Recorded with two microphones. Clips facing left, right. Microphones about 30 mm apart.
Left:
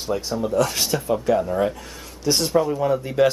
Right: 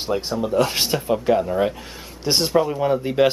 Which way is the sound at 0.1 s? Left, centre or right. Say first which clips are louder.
Right 1 dB; right.